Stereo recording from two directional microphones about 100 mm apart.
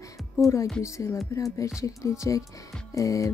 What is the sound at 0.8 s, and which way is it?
Music, 30° left (ahead or behind).